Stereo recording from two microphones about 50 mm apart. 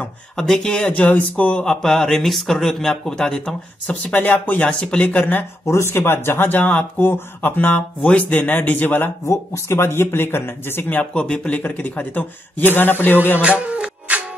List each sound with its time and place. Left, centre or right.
0.4 s a man's voice: centre
0.9 s speech: left
1.6 s a man's voice: centre
3.8 s a man's voice: left
4.6 s speech: left
5.0 s a man's voice: left
5.7 s speech: left
7.0 s a man's voice: left
9.2 s speech: left
11.0 s a man's voice: left
13.4 s music: right